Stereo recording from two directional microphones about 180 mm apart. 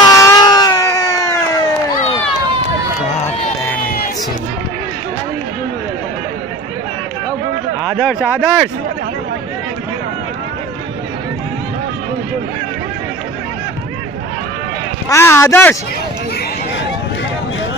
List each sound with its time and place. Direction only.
0.0 s a sound: 15° left (ahead or behind)
7.9 s speech: 10° right (ahead or behind)
15.0 s speech: 15° left (ahead or behind)